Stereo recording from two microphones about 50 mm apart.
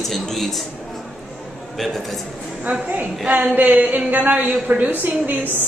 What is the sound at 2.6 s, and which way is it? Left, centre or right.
A woman's voice, right.